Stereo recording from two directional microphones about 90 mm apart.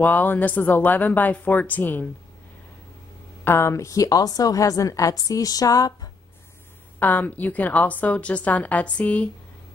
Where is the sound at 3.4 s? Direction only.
30° left (ahead or behind).